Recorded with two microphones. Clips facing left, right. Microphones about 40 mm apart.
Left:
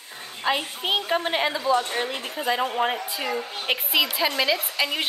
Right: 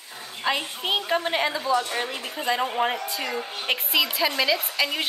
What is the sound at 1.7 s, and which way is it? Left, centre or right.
Speech, left.